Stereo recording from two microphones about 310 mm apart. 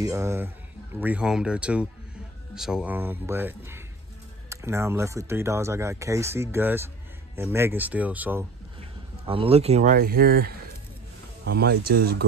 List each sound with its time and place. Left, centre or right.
0.0 s speech: centre
9.2 s speech: centre